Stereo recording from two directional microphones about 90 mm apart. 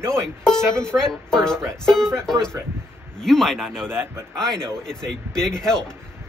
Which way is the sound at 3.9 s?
30° right (ahead or behind).